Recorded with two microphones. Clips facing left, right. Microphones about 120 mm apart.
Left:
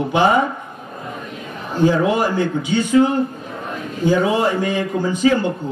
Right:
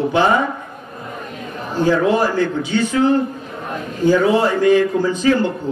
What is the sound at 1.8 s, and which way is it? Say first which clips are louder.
A man's voice: even; 15° left (ahead or behind).